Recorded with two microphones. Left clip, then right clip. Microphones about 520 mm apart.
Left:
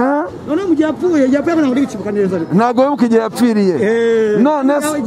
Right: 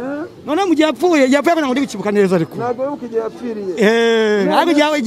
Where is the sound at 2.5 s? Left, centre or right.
Left.